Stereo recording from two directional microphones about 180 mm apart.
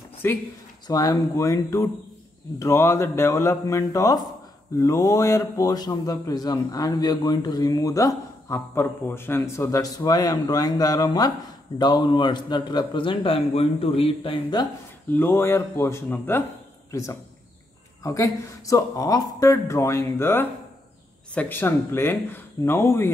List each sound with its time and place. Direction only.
0.2 s speech: 15° left (ahead or behind)
15.1 s speech: 10° left (ahead or behind)